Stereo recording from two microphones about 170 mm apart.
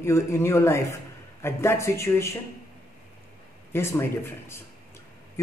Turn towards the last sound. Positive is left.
turn(degrees=15)  # may be behind; listen again after turning